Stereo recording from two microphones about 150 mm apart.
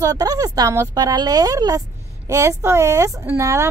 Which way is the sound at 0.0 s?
25° right (ahead or behind).